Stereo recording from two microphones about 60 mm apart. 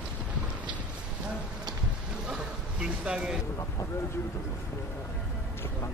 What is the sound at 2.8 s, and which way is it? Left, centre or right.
Speech, centre.